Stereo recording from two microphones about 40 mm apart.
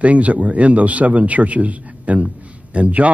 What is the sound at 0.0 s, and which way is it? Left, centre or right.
Speech, right.